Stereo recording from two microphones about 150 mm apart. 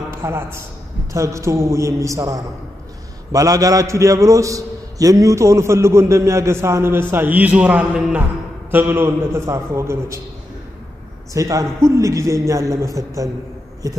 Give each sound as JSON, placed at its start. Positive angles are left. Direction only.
{"t": 0.1, "sound": "a man's voice", "side_deg": -15}
{"t": 11.3, "sound": "a man's voice", "side_deg": -20}